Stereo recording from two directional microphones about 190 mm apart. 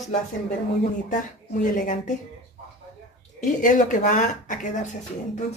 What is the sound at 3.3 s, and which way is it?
Speech, 40° left (ahead or behind).